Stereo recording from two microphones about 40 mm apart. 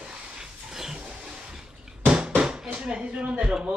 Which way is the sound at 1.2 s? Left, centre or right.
Centre.